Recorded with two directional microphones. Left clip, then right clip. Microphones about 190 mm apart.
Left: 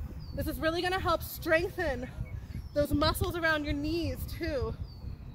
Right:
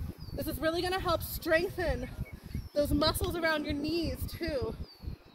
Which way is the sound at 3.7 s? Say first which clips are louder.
Even; 15° left (ahead or behind).